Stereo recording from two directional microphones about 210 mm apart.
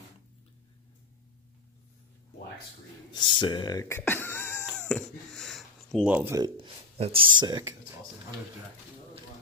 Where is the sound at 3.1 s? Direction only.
20° left (ahead or behind).